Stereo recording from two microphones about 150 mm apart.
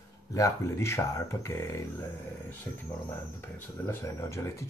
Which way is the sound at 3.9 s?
20° left (ahead or behind).